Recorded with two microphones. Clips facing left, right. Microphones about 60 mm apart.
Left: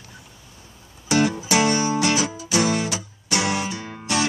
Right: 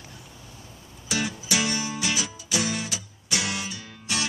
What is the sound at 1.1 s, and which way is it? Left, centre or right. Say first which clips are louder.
Music: left 8 dB; left.